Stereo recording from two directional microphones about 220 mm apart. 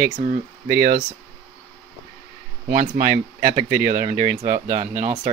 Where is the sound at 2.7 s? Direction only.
40° right (ahead or behind).